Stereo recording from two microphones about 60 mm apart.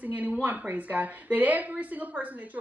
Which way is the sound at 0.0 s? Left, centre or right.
Right.